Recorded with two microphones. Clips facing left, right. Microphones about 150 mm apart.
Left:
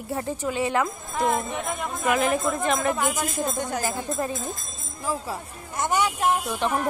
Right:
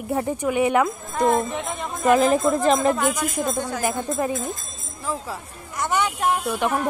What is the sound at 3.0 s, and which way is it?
Speech, 25° left (ahead or behind).